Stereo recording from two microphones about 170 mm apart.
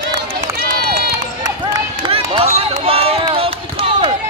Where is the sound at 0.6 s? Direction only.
65° right (ahead or behind).